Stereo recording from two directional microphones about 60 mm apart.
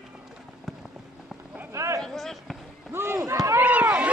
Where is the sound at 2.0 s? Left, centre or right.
Centre.